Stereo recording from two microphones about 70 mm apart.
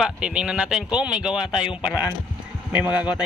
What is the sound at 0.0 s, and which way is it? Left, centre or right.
Speech, centre.